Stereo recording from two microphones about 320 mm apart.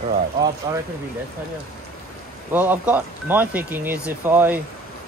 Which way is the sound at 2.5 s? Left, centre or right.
Centre.